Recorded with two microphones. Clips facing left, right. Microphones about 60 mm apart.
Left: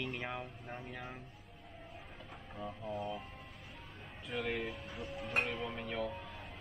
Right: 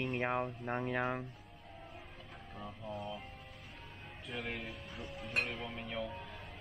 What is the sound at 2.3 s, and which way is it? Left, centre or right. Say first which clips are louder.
Vehicle: left 4 dB; centre.